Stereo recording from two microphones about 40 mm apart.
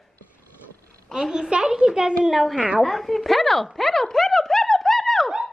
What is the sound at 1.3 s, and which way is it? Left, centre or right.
A child's voice, centre.